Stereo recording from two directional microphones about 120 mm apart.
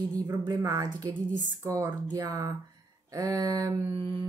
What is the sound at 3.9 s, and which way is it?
Mantra, 45° right (ahead or behind).